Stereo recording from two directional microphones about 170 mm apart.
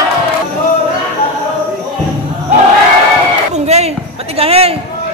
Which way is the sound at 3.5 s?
40° right (ahead or behind).